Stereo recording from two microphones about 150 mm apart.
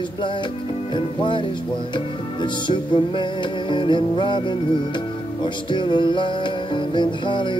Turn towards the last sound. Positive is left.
turn(degrees=30)  # may be behind; listen again after turning